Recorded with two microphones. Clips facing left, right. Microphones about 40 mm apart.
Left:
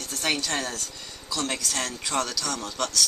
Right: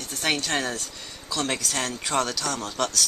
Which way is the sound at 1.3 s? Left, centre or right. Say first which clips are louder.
Right 2 dB; centre.